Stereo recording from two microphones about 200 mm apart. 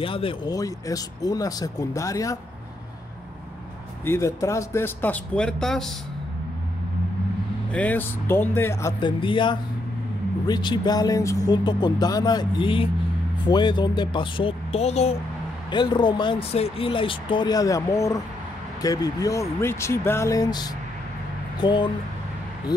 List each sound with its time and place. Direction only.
0.0 s speech: 25° left (ahead or behind)
4.0 s speech: 15° left (ahead or behind)
7.7 s speech: 10° left (ahead or behind)
9.0 s speech: 25° left (ahead or behind)